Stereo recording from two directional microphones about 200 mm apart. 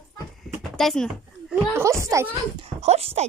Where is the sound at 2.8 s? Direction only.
30° right (ahead or behind).